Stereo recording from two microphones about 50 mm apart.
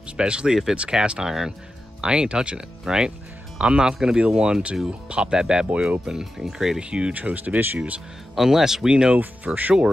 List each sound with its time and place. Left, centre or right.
0.2 s speech: centre
3.5 s speech: centre
6.8 s speech: right
7.2 s speech: right
8.4 s speech: centre